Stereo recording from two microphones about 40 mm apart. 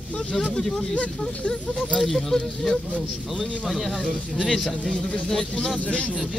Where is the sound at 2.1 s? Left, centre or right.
Centre.